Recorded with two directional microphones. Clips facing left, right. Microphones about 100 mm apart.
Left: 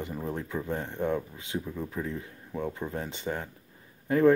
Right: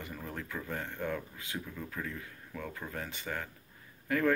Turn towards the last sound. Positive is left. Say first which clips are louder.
# left 8 dB
turn(degrees=25)  # may be behind; listen again after turning